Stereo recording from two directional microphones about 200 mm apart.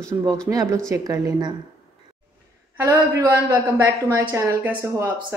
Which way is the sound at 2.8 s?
15° right (ahead or behind).